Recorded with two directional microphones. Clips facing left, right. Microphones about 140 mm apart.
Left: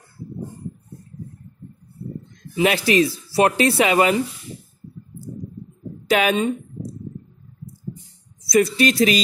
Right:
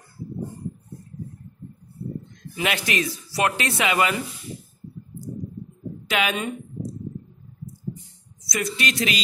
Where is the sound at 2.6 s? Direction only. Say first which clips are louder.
Left 8 dB; 35° left (ahead or behind).